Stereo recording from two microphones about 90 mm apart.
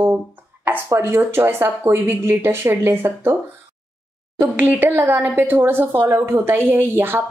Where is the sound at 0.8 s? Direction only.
25° right (ahead or behind).